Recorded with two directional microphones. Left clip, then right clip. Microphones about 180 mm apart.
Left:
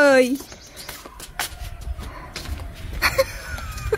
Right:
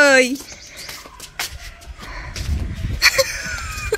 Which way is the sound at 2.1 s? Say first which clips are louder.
Right 3 dB; 5° left (ahead or behind).